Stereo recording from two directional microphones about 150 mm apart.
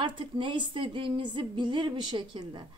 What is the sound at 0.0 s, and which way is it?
A woman's voice, 35° right (ahead or behind).